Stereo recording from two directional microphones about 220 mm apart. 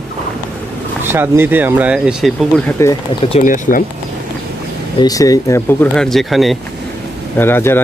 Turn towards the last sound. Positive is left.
turn(degrees=10)  # may be behind; listen again after turning